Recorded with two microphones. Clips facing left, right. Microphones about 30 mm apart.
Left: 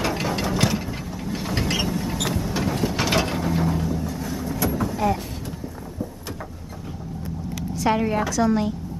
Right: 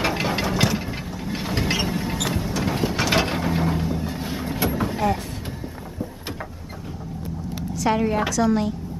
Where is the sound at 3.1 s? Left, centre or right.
Right.